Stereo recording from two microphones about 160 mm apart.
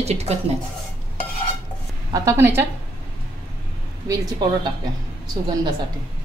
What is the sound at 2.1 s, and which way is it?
Speech, 15° right (ahead or behind).